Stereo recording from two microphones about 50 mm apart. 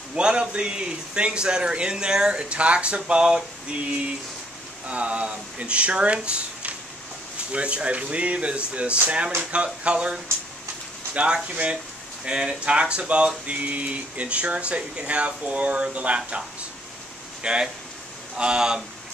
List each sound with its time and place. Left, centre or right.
0.1 s a man's voice: centre
4.8 s a man's voice: right
17.4 s speech: centre